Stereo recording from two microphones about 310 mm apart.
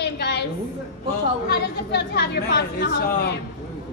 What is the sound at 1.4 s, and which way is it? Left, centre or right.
Speech, left.